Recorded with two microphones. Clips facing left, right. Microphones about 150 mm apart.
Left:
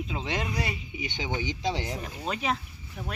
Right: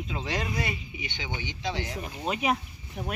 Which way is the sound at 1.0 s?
40° left (ahead or behind).